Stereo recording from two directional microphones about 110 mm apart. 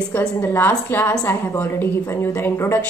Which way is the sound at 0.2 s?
20° left (ahead or behind).